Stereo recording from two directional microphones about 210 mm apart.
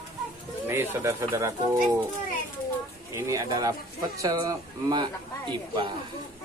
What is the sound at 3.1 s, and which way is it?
Speech, 15° right (ahead or behind).